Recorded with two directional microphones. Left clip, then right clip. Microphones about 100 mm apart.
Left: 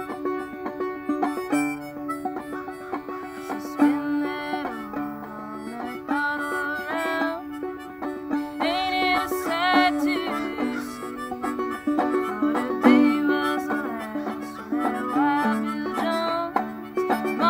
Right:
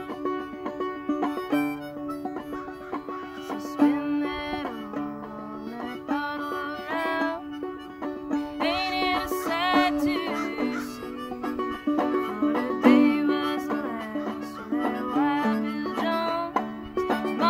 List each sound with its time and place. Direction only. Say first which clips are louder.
0.2 s music: even; 25° right (ahead or behind)
3.7 s music: left 1 dB; 25° right (ahead or behind)
6.0 s music: left 4 dB; 20° right (ahead or behind)